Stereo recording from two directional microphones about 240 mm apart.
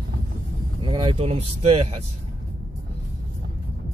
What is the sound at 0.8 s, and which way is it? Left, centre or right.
Speech, right.